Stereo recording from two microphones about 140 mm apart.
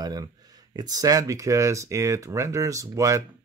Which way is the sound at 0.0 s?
30° right (ahead or behind).